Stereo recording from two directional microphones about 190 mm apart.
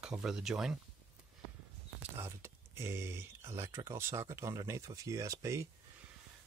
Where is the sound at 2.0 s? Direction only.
15° right (ahead or behind).